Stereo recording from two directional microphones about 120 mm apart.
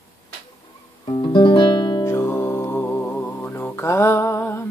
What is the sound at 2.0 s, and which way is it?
Music, 25° left (ahead or behind).